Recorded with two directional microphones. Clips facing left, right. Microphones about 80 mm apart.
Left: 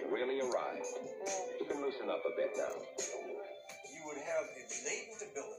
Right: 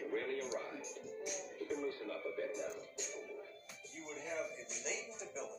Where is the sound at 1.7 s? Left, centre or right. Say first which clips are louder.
Left 2 dB; left.